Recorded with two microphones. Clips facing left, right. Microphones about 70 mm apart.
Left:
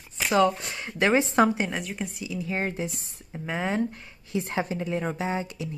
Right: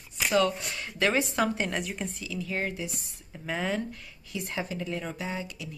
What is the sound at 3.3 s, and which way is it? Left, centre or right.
Speech, left.